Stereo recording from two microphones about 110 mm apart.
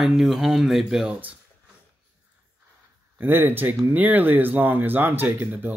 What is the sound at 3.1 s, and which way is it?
Speech, 20° right (ahead or behind).